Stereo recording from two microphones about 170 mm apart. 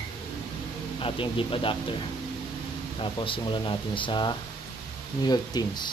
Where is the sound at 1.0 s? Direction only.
30° left (ahead or behind).